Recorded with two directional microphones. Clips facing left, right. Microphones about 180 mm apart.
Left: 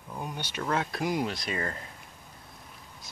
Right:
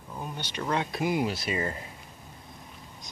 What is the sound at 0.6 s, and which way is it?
Speech, centre (ahead or behind).